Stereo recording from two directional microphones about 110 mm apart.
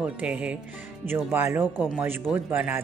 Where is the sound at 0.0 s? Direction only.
10° right (ahead or behind).